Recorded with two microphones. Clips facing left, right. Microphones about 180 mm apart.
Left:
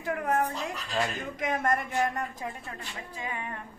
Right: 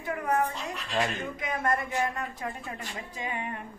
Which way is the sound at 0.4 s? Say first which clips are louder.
Even; 40° left (ahead or behind).